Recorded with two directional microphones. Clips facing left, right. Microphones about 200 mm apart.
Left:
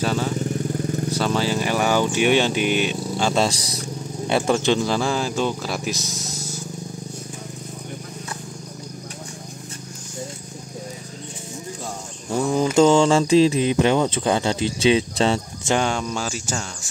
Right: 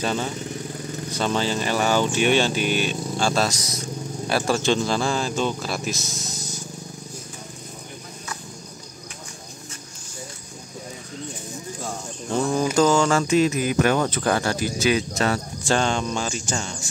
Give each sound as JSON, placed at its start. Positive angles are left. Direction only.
{"t": 0.0, "sound": "vehicle", "side_deg": 5}
{"t": 2.1, "sound": "speech", "side_deg": 15}
{"t": 3.4, "sound": "speech", "side_deg": 30}
{"t": 4.6, "sound": "speech", "side_deg": 15}
{"t": 11.8, "sound": "cricket", "side_deg": 10}
{"t": 12.7, "sound": "speech", "side_deg": 30}